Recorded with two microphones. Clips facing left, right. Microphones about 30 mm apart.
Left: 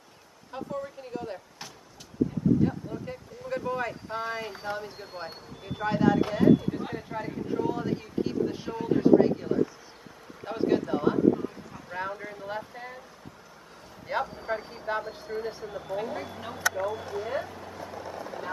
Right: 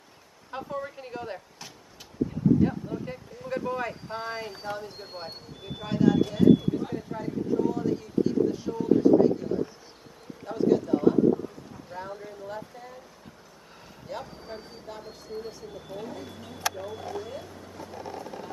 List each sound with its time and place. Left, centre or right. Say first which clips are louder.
0.5 s speech: right 1 dB; centre
2.6 s speech: right 2 dB; centre
5.9 s speech: right 1 dB; centre
11.7 s a sound: left 4 dB; left
12.2 s speech: left 2 dB; left
14.1 s speech: left 8 dB; left
14.9 s speech: left 12 dB; left
15.2 s speech: left 4 dB; left
16.0 s speech: left 4 dB; left
16.8 s speech: left 4 dB; centre
17.3 s speech: left 7 dB; left
18.0 s vehicle: even; centre